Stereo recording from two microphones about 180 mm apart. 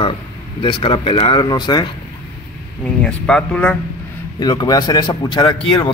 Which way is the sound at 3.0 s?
5° left (ahead or behind).